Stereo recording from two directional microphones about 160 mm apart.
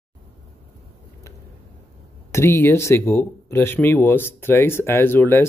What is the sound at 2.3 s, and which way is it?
Speech, 15° left (ahead or behind).